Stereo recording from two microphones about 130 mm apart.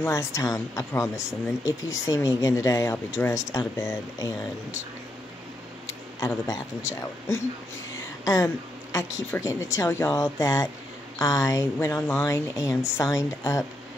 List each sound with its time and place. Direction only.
0.0 s speech: 20° left (ahead or behind)
6.1 s speech: 25° left (ahead or behind)
8.9 s speech: 25° left (ahead or behind)